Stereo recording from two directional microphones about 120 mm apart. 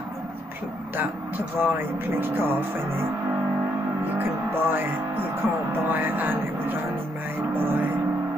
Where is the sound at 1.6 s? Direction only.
15° right (ahead or behind).